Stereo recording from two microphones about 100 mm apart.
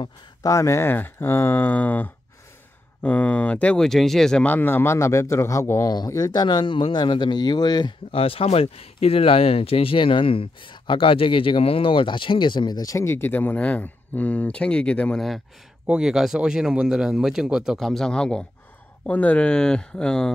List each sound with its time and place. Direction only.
0.0 s speech: 35° left (ahead or behind); by 4.5 s 5° left (ahead or behind)
4.5 s a man's voice: 20° left (ahead or behind); by 7.9 s 45° left (ahead or behind)
8.1 s speech: 70° left (ahead or behind); by 20.3 s 5° left (ahead or behind)